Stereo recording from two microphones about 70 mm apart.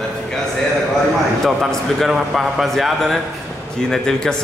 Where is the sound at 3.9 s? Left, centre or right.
Centre.